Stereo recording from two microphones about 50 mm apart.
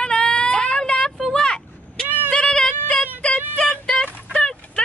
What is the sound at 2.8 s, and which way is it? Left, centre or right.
Child singing, left.